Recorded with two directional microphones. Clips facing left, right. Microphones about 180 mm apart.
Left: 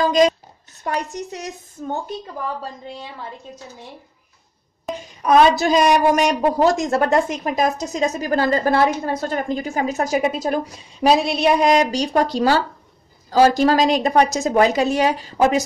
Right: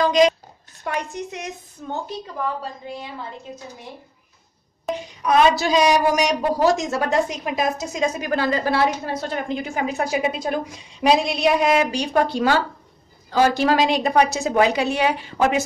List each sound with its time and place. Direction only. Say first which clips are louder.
0.0 s a woman's voice: left 1 dB; 45° left (ahead or behind)
5.2 s a woman's voice: left 3 dB; 50° left (ahead or behind)